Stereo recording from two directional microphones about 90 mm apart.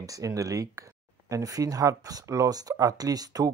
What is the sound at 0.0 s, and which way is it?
Speech, 40° right (ahead or behind).